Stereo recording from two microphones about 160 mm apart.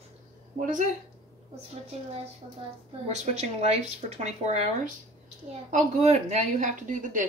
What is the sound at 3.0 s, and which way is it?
Speech, 45° right (ahead or behind).